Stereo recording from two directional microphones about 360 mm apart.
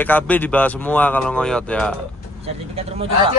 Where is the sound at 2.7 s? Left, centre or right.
Centre.